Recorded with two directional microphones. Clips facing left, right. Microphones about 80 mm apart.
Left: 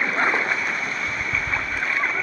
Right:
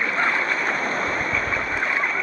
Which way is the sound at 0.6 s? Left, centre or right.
Right.